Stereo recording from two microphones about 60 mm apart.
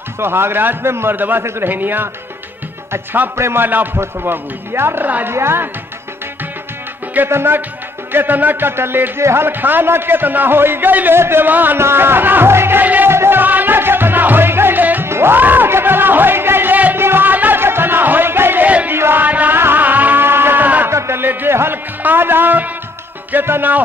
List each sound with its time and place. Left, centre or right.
0.2 s a man's voice: right
3.6 s a man's voice: right
5.0 s a woman's voice: right
5.3 s speech: right
7.2 s a man's voice: right
12.8 s music: right
13.1 s music: right
13.4 s music: right
15.0 s music: right
18.9 s chant: right
19.2 s music: right
22.0 s a man's voice: right